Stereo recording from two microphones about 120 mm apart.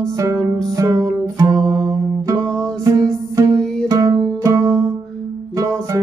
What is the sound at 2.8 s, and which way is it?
Music, 25° right (ahead or behind).